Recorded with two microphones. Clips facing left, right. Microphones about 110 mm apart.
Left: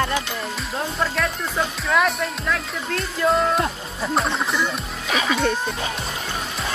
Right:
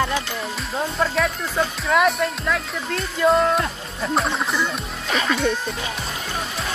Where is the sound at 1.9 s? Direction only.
Centre (ahead or behind).